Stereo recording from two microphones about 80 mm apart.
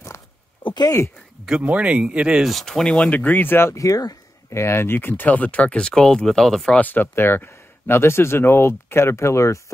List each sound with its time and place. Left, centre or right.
1.6 s speech: centre
2.5 s speech: centre; by 4.2 s left
4.5 s speech: left; by 6.8 s centre
6.8 s speech: left